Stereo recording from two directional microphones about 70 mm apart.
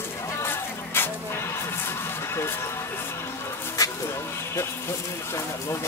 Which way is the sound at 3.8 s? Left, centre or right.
Left.